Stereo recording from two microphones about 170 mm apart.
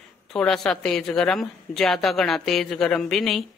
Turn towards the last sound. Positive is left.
turn(degrees=0)  # may be behind; listen again after turning